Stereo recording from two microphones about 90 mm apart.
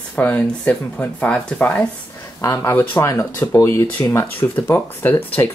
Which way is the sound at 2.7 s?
20° left (ahead or behind).